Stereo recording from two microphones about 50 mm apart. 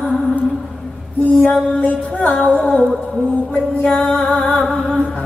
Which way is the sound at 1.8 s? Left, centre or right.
Left.